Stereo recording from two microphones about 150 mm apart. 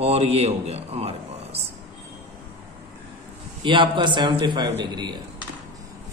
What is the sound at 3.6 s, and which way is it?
A man's voice, 30° right (ahead or behind).